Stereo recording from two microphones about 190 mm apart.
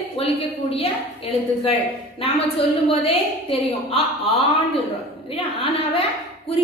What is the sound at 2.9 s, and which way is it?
A woman's voice, 30° left (ahead or behind).